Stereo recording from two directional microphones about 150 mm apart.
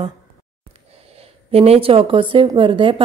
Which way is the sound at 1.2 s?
40° right (ahead or behind).